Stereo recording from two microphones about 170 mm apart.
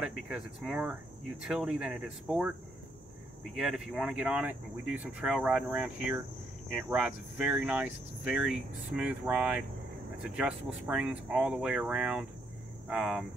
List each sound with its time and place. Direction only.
0.0 s speech: 5° right (ahead or behind)
3.5 s speech: centre (ahead or behind)